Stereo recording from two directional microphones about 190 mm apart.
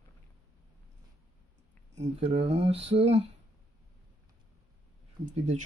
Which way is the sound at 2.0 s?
35° right (ahead or behind).